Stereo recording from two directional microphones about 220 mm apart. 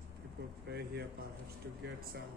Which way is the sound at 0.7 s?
45° right (ahead or behind).